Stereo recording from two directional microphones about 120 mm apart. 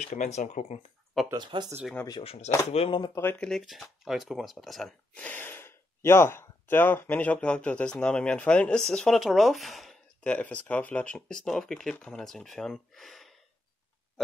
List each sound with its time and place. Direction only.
0.0 s speech: 85° left
1.3 s speech: 40° right (ahead or behind)
2.2 s speech: 70° left (ahead or behind)
2.7 s speech: 55° left (ahead or behind)
3.2 s speech: 20° left (ahead or behind)
3.4 s speech: centre (ahead or behind)
5.1 s speech: 15° left (ahead or behind)